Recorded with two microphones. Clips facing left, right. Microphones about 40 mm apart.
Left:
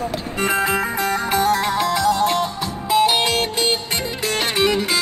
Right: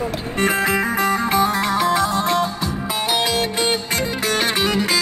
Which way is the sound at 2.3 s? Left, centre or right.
Left.